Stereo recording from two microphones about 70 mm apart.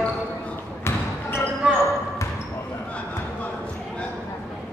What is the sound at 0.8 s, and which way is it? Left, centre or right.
Basketball bounce, left.